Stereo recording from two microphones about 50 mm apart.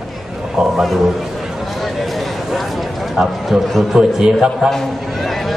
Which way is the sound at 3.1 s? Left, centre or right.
Centre.